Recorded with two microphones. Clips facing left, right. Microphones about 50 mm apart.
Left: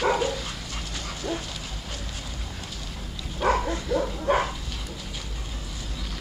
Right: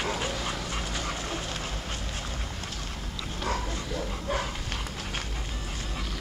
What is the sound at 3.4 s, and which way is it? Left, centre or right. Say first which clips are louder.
Dog: left 9 dB; left.